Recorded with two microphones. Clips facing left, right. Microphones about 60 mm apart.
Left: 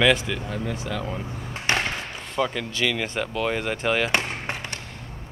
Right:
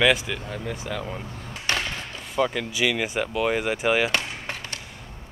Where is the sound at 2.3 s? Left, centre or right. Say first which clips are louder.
Right 2 dB; centre.